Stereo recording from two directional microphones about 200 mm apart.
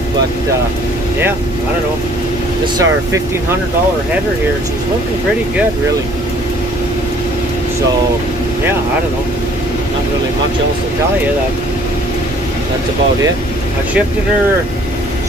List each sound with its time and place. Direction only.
2.6 s speech: 15° right (ahead or behind)